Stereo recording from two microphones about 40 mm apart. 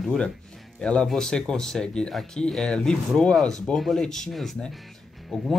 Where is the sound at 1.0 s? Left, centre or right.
Centre.